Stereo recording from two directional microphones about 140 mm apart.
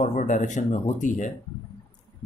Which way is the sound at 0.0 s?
60° left (ahead or behind).